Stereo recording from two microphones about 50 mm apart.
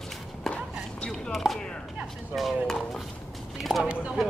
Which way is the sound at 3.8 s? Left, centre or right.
Right.